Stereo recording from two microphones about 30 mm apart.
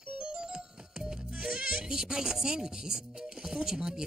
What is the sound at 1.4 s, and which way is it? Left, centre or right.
Speech, right.